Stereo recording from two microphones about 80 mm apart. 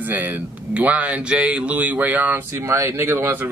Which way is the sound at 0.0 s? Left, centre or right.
Right.